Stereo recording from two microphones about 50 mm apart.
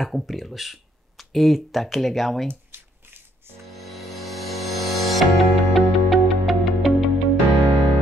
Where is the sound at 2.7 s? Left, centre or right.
Right.